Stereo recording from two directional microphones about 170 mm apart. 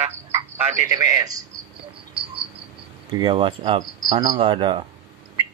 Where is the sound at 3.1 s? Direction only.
25° right (ahead or behind).